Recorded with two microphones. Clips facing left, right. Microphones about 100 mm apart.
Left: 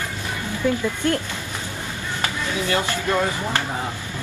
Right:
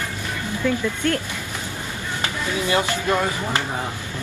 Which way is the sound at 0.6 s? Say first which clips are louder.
Left 1 dB; 15° left (ahead or behind).